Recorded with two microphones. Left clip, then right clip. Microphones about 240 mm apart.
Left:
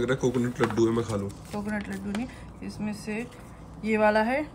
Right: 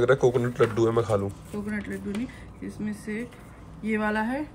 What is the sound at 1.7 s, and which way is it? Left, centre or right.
Speech, left.